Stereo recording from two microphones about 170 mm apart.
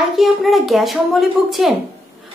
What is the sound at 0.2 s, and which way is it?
A woman's voice, centre (ahead or behind).